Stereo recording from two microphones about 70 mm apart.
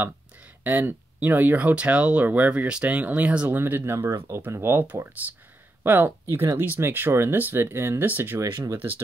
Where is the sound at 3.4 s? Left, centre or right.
Right.